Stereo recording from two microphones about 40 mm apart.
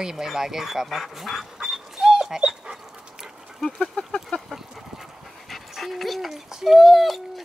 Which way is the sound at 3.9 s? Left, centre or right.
Left.